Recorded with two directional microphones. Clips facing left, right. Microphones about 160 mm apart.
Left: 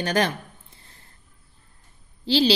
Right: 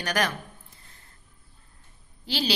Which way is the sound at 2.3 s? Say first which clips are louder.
Left 9 dB; 30° left (ahead or behind).